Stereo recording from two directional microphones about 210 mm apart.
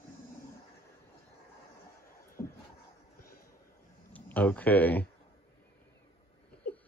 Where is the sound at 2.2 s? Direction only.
45° left (ahead or behind).